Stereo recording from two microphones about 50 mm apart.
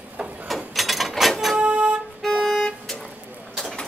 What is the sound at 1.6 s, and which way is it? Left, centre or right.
Music, right.